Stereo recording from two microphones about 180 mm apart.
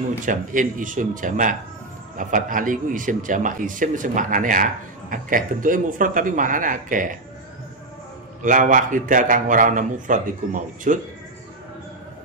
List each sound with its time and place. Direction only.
0.2 s a man's voice: 45° right (ahead or behind)
8.4 s a man's voice: 45° right (ahead or behind)